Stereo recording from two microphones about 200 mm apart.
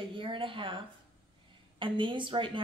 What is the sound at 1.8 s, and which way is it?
Speech, 25° right (ahead or behind).